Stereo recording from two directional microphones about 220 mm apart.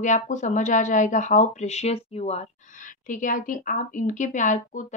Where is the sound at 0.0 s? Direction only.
35° left (ahead or behind).